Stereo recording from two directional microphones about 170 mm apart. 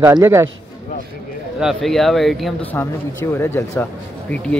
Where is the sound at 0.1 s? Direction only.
15° right (ahead or behind).